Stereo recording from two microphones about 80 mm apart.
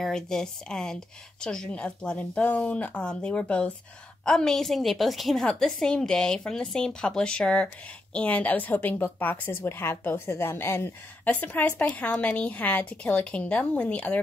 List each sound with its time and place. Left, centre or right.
0.0 s a woman's voice: centre